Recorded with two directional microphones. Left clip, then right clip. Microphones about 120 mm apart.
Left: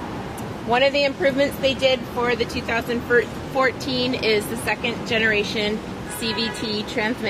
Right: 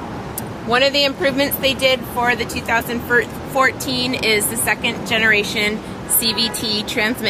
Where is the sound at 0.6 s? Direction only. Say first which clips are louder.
Right 3 dB; 50° right (ahead or behind).